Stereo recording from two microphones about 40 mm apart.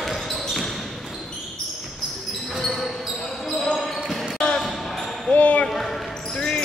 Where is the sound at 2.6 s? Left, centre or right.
Centre.